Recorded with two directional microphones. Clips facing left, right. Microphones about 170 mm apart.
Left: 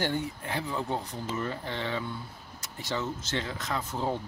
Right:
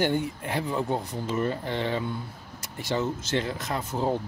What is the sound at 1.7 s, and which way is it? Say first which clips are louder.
Speech: right 5 dB; 50° right (ahead or behind).